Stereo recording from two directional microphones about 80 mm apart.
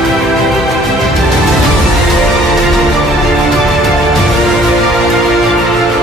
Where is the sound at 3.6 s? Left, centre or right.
Centre.